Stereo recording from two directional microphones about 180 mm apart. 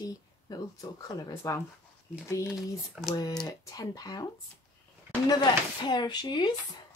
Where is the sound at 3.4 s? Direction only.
20° left (ahead or behind).